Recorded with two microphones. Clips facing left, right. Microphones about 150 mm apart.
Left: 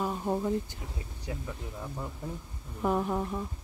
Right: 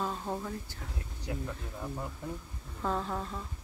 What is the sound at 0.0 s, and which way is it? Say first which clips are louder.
Speech: left 5 dB; 15° left (ahead or behind).